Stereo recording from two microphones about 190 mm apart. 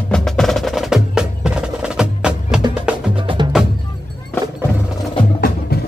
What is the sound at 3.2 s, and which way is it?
Wood block, 25° right (ahead or behind).